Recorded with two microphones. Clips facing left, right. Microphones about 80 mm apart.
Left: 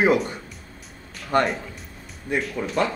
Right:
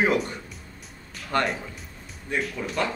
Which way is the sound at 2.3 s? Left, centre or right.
Centre.